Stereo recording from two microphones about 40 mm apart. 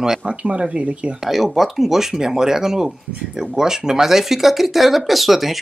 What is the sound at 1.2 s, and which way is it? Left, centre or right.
Speech, centre.